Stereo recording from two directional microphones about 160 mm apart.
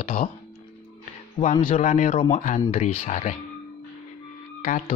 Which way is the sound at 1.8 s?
50° left (ahead or behind).